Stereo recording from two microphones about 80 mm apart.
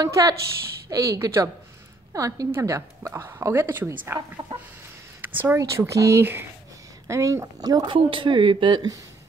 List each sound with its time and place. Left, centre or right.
0.0 s speech: right
5.3 s speech: right
5.6 s speech: right
7.6 s speech: right
7.9 s speech: right